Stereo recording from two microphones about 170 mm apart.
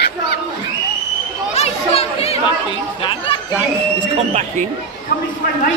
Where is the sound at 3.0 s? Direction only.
30° left (ahead or behind).